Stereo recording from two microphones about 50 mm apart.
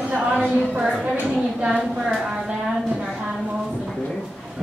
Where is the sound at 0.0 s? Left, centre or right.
Right.